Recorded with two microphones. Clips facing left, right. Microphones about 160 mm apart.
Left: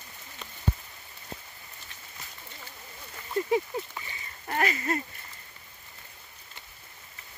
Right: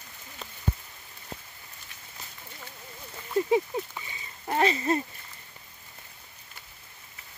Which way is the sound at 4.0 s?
15° right (ahead or behind).